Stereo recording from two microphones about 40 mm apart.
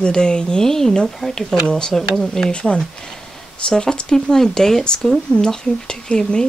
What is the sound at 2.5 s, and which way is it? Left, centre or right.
Speech, left.